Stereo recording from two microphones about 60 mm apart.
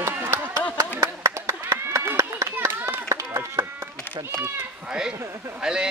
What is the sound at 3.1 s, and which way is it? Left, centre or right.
Chop, right.